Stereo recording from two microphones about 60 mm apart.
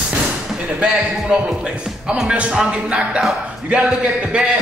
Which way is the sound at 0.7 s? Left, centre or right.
Centre.